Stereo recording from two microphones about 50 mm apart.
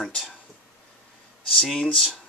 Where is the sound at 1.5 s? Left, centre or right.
Centre.